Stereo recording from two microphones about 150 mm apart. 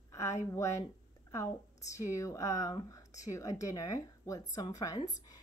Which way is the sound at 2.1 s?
20° left (ahead or behind).